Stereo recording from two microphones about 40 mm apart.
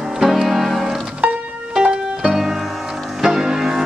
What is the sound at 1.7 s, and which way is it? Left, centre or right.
Music, centre.